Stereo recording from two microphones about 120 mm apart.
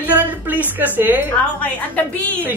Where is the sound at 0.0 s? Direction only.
15° right (ahead or behind).